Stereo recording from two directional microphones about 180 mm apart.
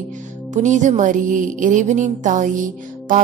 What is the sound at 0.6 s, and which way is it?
A woman's voice, 40° right (ahead or behind).